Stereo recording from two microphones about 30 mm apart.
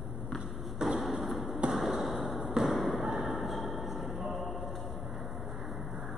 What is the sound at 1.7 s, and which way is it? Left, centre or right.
Basketball bounce, centre.